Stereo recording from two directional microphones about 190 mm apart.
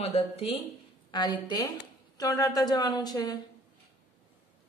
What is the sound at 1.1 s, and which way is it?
Speech, 25° left (ahead or behind).